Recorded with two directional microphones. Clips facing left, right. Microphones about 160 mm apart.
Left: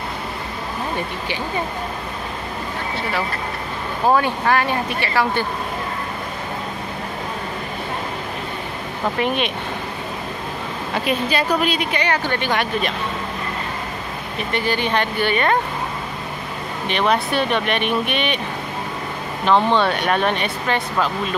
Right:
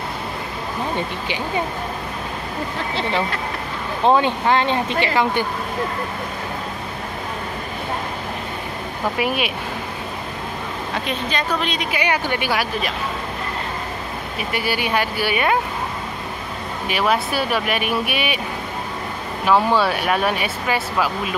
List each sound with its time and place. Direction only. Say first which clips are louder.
4.0 s speech: right 1 dB; 20° right (ahead or behind)
9.2 s speech: left 1 dB; 5° right (ahead or behind)
11.1 s a woman's voice: left 5 dB; 5° left (ahead or behind)
11.9 s speech: even; 10° right (ahead or behind)
14.5 s speech: left 1 dB; 10° right (ahead or behind)
16.8 s speech: left 1 dB; 5° right (ahead or behind)
19.4 s speech: even; 5° right (ahead or behind)